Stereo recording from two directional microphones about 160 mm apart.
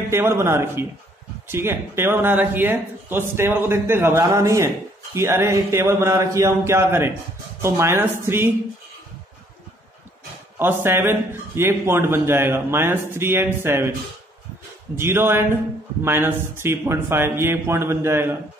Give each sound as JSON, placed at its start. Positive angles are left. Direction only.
{"t": 0.1, "sound": "a man's voice", "side_deg": -15}
{"t": 10.6, "sound": "a man's voice", "side_deg": -15}
{"t": 15.0, "sound": "a man's voice", "side_deg": -15}